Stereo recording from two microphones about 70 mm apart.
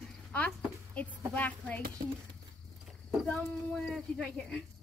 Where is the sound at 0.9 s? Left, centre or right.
Left.